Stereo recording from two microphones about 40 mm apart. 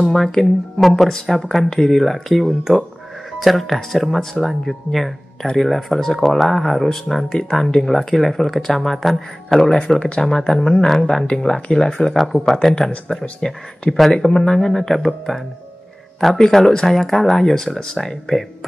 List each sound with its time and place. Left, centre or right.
0.0 s speech: centre
9.9 s speech: left
10.2 s speech: centre